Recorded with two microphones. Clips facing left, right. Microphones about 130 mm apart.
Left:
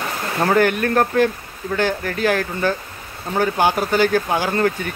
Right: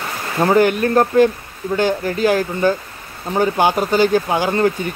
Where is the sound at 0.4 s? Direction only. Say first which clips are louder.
Right 3 dB; 15° right (ahead or behind).